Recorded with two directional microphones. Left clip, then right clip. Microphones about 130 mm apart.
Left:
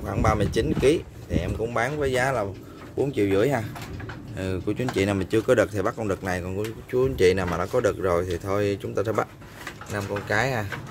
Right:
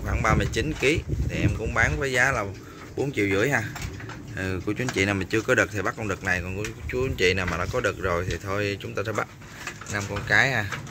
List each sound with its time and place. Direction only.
0.0 s speech: 20° left (ahead or behind); by 9.3 s 40° left (ahead or behind)
9.9 s speech: 15° left (ahead or behind)